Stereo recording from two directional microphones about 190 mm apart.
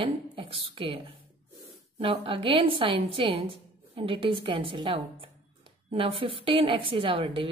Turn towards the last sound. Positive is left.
turn(degrees=-25)  # may be behind; listen again after turning